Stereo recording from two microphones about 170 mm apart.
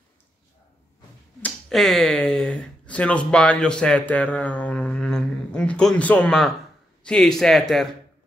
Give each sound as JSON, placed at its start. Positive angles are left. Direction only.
{"t": 1.4, "sound": "speech", "side_deg": 0}